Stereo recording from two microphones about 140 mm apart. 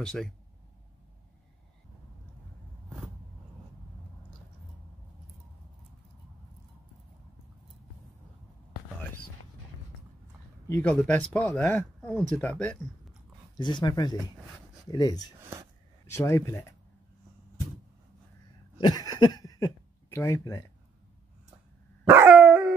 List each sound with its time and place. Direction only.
0.0 s speech: 5° left (ahead or behind)
10.7 s speech: 10° left (ahead or behind)
13.6 s speech: 35° left (ahead or behind)
18.8 s speech: 30° left (ahead or behind)
22.3 s dog: 5° right (ahead or behind)